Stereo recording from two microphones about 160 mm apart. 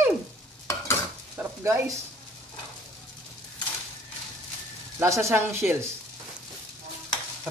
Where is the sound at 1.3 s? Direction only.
15° right (ahead or behind).